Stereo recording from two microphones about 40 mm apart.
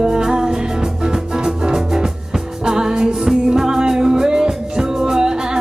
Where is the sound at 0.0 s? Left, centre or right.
Centre.